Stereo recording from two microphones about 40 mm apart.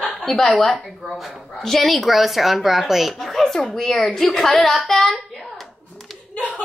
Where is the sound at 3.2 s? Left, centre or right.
Centre.